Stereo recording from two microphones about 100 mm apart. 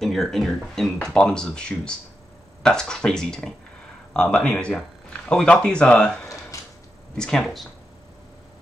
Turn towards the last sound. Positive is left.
turn(degrees=0)  # may be behind; listen again after turning